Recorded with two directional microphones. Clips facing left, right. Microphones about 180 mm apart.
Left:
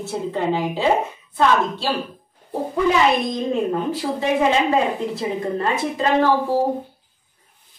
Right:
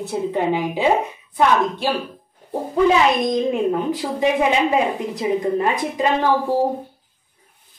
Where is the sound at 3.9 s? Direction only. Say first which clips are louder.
Right 1 dB; 15° right (ahead or behind).